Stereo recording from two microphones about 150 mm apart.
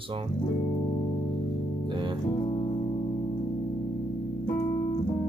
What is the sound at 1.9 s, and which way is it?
Music, 30° right (ahead or behind).